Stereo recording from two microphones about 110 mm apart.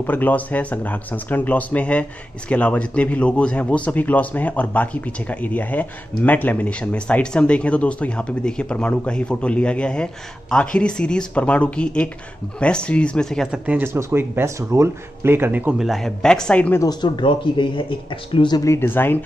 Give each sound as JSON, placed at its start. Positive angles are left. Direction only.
{"t": 0.0, "sound": "speech", "side_deg": 15}
{"t": 13.5, "sound": "speech", "side_deg": -15}
{"t": 15.8, "sound": "speech", "side_deg": 0}
{"t": 17.0, "sound": "speech", "side_deg": 45}
{"t": 18.6, "sound": "speech", "side_deg": 25}